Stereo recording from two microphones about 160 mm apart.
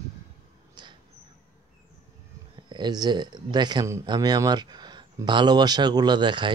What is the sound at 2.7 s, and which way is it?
Speech, 25° right (ahead or behind).